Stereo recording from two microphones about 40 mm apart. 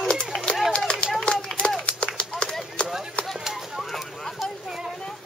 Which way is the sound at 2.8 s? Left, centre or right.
Left.